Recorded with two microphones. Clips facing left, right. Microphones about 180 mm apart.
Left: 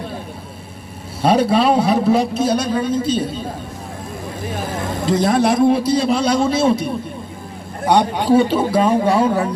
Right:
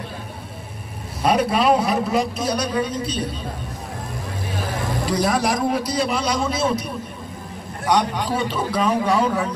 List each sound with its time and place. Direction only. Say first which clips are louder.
1.2 s a man's voice: left 4 dB; 30° left (ahead or behind)
5.0 s a man's voice: left 6 dB; 25° left (ahead or behind)